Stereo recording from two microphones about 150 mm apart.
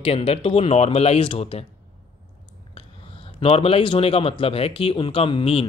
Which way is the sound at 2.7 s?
40° left (ahead or behind).